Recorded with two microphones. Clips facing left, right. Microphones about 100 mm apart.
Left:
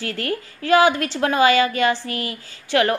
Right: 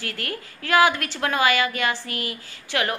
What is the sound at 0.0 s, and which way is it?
A woman's voice, 30° left (ahead or behind).